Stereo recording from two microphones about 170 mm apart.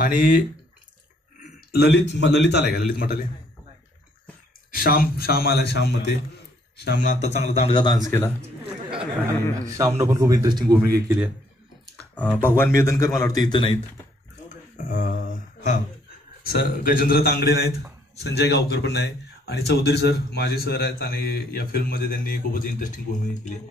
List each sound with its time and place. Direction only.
0.0 s speech: 50° left (ahead or behind)
1.4 s a man's voice: 70° left (ahead or behind); by 3.3 s 55° left (ahead or behind)
4.7 s speech: 60° left (ahead or behind)
7.0 s a man's voice: 45° left (ahead or behind)
7.7 s speech: 25° left (ahead or behind)
9.8 s a man's voice: 20° right (ahead or behind)
12.0 s speech: 10° left (ahead or behind); by 13.7 s 30° left (ahead or behind)
14.8 s mantra: 50° left (ahead or behind)
16.4 s a man's voice: 60° left (ahead or behind)